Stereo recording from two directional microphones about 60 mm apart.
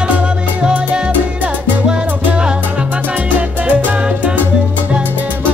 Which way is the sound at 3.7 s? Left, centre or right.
Right.